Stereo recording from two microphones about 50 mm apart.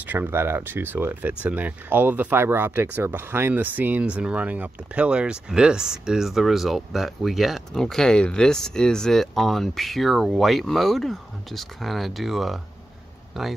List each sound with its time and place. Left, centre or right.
0.0 s a sound: right
0.3 s speech: right
1.2 s speech: right
2.4 s speech: right
4.0 s speech: right; by 7.6 s centre
7.7 s speech: centre